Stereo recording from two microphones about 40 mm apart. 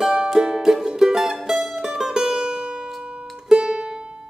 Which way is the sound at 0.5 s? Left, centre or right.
Centre.